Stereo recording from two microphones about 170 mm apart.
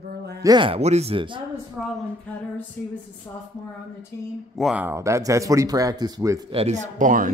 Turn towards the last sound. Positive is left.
turn(degrees=-50)  # may be behind; listen again after turning